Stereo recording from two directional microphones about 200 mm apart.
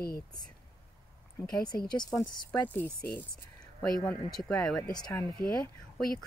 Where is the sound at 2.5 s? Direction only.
5° left (ahead or behind).